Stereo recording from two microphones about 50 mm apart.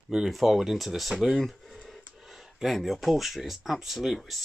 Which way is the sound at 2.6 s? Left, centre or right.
Centre.